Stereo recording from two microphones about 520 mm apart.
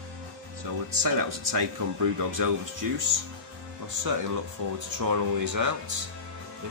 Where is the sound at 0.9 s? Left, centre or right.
Right.